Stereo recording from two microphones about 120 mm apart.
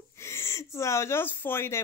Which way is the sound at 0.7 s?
25° left (ahead or behind).